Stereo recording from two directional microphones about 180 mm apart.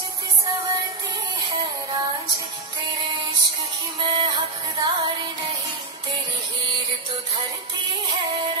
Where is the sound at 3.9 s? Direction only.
30° right (ahead or behind).